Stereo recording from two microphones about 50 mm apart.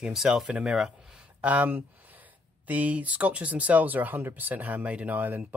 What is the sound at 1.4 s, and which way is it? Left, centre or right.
Speech, right.